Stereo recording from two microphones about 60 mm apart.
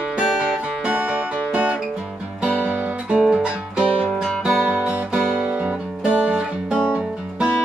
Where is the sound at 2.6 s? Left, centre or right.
Centre.